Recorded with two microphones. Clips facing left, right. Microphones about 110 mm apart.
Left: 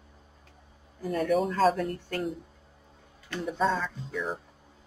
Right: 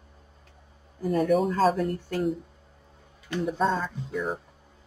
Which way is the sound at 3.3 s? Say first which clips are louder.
Right 2 dB; centre (ahead or behind).